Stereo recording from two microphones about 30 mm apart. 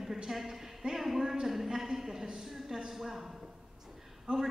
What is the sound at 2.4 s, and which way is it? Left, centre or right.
Speech, centre.